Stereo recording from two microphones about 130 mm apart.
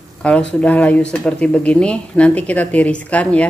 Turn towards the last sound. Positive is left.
turn(degrees=10)  # may be behind; listen again after turning